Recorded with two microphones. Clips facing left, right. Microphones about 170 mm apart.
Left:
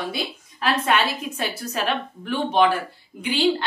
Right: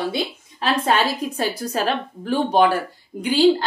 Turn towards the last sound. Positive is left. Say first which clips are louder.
# right 5 dB
turn(degrees=-40)  # may be behind; listen again after turning